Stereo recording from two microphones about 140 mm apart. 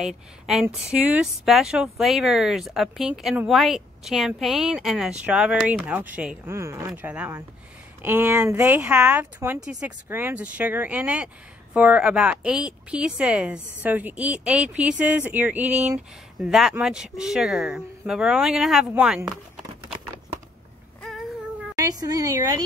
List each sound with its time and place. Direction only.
0.0 s a woman's voice: 5° right (ahead or behind)
16.3 s a woman's voice: centre (ahead or behind)
21.7 s speech: 25° right (ahead or behind)